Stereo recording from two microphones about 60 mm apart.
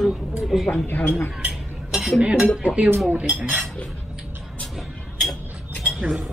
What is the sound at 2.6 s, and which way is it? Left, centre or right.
Cutlery, centre.